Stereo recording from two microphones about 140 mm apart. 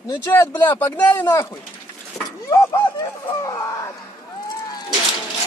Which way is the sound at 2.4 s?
20° left (ahead or behind).